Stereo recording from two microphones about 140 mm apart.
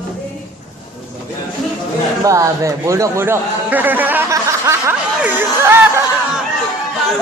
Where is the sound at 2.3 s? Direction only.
20° right (ahead or behind).